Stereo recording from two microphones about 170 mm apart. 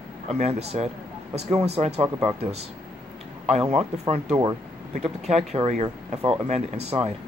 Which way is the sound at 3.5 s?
40° right (ahead or behind).